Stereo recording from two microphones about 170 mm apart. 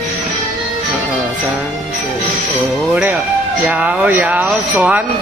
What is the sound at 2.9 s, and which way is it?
Music, 10° right (ahead or behind).